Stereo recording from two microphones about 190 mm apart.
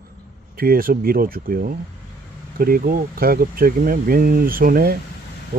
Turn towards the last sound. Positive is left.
turn(degrees=-50)  # may be behind; listen again after turning